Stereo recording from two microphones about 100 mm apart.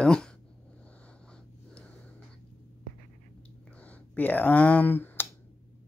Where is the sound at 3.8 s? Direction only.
15° left (ahead or behind).